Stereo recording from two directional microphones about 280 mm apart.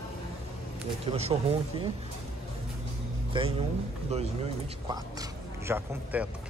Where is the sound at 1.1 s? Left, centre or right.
Right.